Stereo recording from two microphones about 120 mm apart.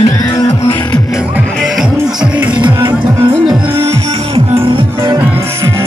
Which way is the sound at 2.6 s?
35° right (ahead or behind).